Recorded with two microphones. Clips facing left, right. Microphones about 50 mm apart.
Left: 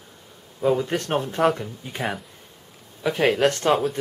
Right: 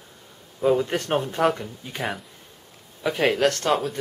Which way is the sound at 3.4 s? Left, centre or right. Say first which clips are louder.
Left 2 dB; centre.